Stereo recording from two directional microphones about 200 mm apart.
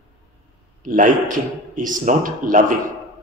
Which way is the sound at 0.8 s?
40° right (ahead or behind).